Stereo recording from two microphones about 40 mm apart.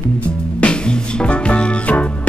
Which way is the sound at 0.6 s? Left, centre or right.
Left.